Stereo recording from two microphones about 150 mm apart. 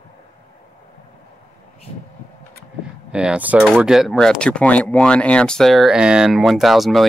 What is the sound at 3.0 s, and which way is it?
Speech, 5° right (ahead or behind).